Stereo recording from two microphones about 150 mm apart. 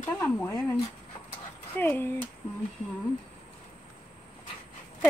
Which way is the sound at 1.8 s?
15° left (ahead or behind).